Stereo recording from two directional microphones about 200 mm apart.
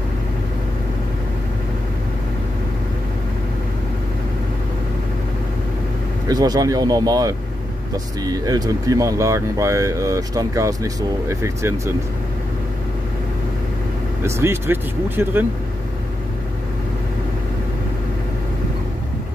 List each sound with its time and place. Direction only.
6.2 s speech: 20° right (ahead or behind)
14.2 s speech: 15° right (ahead or behind)